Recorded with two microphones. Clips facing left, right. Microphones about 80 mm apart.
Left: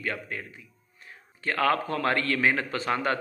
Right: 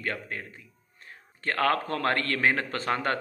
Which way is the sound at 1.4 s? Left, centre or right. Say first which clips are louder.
Left 1 dB; right.